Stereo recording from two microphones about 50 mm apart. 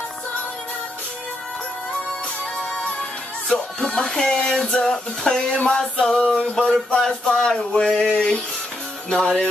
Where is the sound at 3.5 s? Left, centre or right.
Centre.